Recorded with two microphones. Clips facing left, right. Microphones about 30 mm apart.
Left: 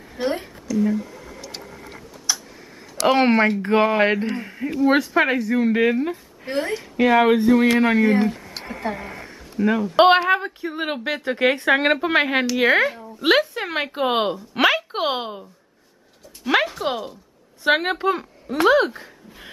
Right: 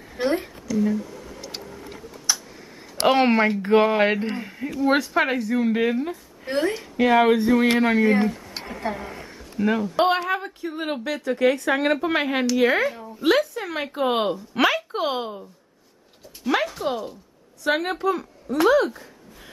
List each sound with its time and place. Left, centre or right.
0.2 s a woman's voice: centre
3.3 s a woman's voice: centre
6.5 s speech: centre
8.9 s speech: left
9.3 s a sound: centre
9.8 s speech: left
10.3 s a woman's voice: centre
13.2 s a woman's voice: left
13.8 s a woman's voice: left
14.9 s speech: left
16.4 s music: left
16.8 s a woman's voice: left